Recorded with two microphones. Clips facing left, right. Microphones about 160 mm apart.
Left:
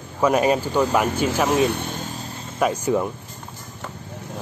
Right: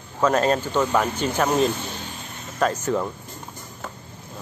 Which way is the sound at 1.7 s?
55° left (ahead or behind).